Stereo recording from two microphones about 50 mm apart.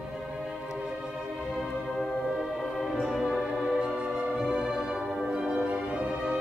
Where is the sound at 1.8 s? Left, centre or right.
Centre.